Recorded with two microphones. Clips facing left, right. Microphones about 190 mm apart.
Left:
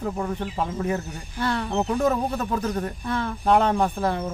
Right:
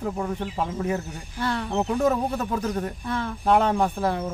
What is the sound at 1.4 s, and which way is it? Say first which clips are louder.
Speech: left 1 dB; 65° left (ahead or behind).